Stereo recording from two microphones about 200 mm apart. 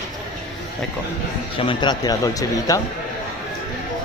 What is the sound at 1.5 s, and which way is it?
A man's voice, 25° left (ahead or behind).